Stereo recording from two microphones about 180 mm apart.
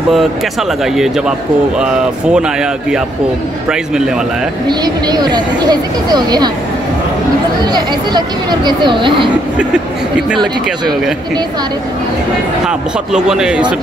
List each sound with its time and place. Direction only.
0.9 s speech: centre (ahead or behind)
4.6 s speech: 25° right (ahead or behind)
7.7 s speech: 25° right (ahead or behind)
10.3 s speech: centre (ahead or behind)
12.6 s speech: 5° right (ahead or behind)